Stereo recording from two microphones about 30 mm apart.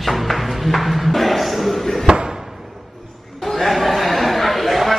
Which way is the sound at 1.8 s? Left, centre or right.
Centre.